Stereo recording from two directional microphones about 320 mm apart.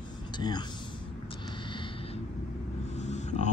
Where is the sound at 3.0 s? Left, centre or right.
Left.